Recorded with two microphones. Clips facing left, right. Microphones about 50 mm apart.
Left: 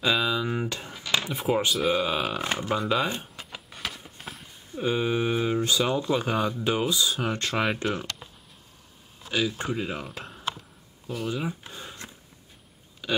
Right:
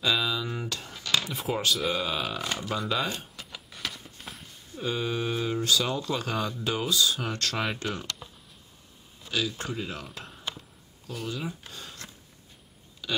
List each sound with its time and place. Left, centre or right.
0.0 s a sound: centre
1.9 s speech: centre
2.4 s speech: left
2.8 s speech: centre
3.4 s a sound: centre
4.7 s speech: centre
9.3 s speech: centre
10.0 s speech: centre
11.2 s speech: left
13.0 s a sound: left